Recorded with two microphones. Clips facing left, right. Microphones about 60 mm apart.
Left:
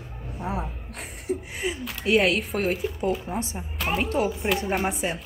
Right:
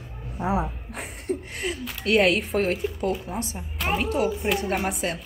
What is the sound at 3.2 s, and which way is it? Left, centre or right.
Speech, left.